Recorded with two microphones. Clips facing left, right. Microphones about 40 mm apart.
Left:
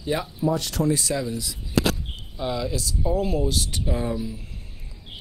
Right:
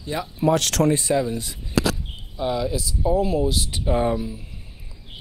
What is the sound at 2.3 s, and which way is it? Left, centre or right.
Speech, centre.